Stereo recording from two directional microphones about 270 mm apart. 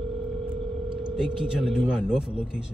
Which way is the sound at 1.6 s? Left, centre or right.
Centre.